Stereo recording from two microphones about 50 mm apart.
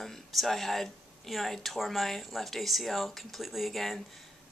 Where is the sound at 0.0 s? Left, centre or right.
Centre.